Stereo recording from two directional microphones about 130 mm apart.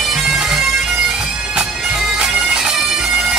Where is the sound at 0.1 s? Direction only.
5° right (ahead or behind).